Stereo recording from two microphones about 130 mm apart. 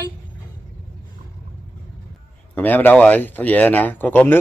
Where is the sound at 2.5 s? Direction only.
15° left (ahead or behind).